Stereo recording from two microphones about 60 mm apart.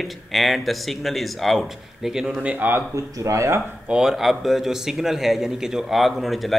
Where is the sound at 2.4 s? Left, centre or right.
Right.